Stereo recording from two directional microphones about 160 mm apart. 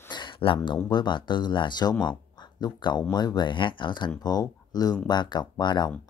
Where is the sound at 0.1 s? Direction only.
30° left (ahead or behind).